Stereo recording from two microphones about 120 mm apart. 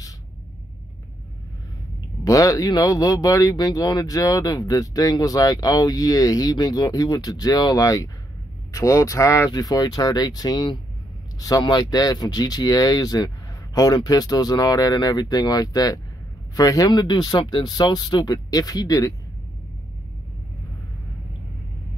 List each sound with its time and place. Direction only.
2.2 s speech: 30° left (ahead or behind)